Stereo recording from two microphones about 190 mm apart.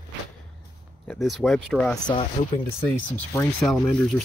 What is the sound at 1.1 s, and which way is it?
Speech, centre (ahead or behind).